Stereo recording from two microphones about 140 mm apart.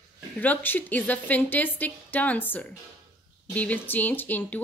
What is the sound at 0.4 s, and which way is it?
A woman's voice, 10° left (ahead or behind).